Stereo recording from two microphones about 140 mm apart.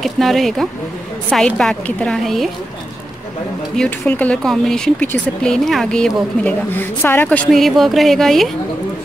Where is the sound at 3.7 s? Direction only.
5° left (ahead or behind).